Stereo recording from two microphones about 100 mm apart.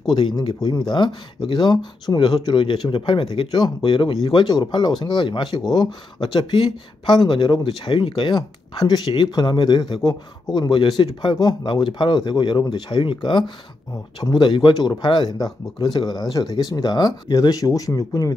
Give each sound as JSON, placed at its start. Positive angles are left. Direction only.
{"t": 0.1, "sound": "speech", "side_deg": 50}
{"t": 10.7, "sound": "speech", "side_deg": 55}
{"t": 14.7, "sound": "speech", "side_deg": 45}